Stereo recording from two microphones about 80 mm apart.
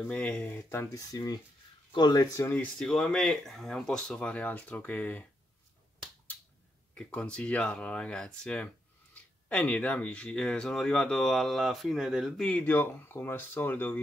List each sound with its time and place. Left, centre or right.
0.1 s speech: centre
0.5 s speech: left
1.1 s speech: left
1.9 s speech: left
2.4 s speech: left
2.8 s speech: centre
7.0 s speech: centre
12.4 s speech: left